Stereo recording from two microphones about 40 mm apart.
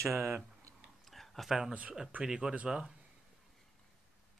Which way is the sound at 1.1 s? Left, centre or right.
Centre.